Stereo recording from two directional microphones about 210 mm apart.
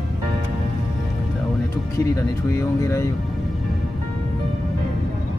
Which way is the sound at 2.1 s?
15° left (ahead or behind).